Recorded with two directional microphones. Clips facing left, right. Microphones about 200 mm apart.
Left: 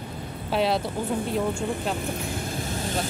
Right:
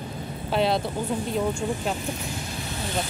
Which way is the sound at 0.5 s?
5° left (ahead or behind).